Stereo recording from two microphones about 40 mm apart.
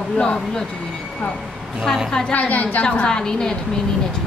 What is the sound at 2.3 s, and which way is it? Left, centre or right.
Speech, left.